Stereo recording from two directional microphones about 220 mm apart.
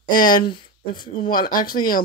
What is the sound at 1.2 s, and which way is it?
Speech, 40° left (ahead or behind).